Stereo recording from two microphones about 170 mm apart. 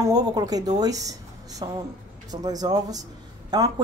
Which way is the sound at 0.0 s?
20° right (ahead or behind).